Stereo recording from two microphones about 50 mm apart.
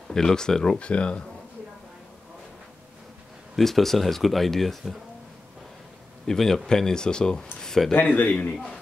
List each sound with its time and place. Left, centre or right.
0.1 s speech: centre
3.5 s speech: centre
6.2 s speech: centre
7.6 s a sound: centre
7.9 s speech: left